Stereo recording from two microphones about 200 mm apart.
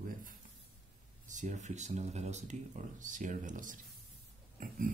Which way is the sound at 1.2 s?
40° right (ahead or behind).